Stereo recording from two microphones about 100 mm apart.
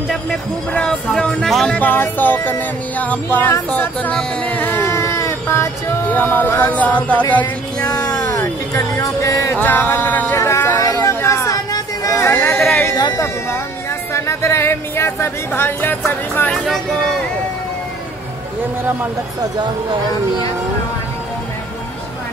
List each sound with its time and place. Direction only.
0.1 s speech: 5° left (ahead or behind)
1.8 s speech: 20° left (ahead or behind)
4.2 s a sound: 15° left (ahead or behind)
6.0 s speech: 15° left (ahead or behind)
7.8 s music: 35° left (ahead or behind)
9.6 s speech: 20° left (ahead or behind)
10.4 s a sound: 25° left (ahead or behind)
12.1 s a sound: 25° left (ahead or behind)
14.1 s speech: 25° left (ahead or behind)